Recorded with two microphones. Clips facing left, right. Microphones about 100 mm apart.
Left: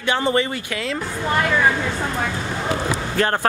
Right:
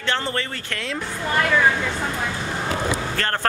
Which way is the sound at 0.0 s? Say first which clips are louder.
Left 5 dB; 15° left (ahead or behind).